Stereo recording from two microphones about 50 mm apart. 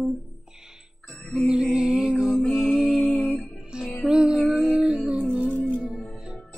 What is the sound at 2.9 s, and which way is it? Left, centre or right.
Music, right.